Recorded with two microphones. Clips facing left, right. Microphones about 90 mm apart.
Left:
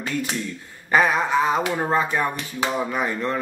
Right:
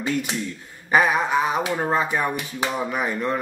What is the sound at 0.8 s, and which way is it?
Speech, 15° right (ahead or behind).